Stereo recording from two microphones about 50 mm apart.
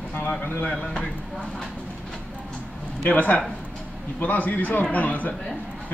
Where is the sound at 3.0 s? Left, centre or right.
Left.